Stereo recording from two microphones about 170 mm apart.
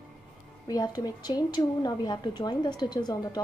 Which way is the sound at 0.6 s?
20° left (ahead or behind).